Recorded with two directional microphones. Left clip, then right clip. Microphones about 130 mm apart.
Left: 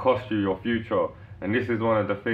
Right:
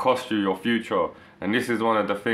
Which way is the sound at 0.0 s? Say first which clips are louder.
Right 1 dB; 20° right (ahead or behind).